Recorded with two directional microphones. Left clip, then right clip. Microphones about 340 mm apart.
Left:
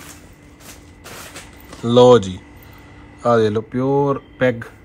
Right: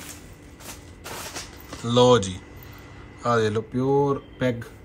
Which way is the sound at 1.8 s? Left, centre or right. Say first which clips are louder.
Left 7 dB; centre.